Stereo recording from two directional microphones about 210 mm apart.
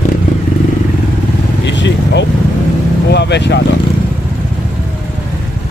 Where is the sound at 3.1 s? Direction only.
55° left (ahead or behind).